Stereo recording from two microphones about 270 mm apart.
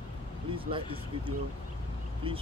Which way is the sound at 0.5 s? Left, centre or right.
Centre.